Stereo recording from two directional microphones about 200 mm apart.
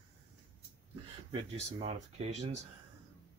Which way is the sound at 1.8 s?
30° right (ahead or behind).